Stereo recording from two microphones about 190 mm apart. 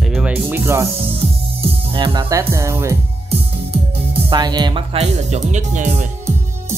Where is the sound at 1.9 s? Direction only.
20° right (ahead or behind).